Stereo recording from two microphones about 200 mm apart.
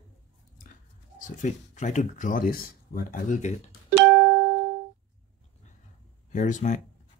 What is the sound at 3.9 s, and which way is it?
Music, 5° right (ahead or behind).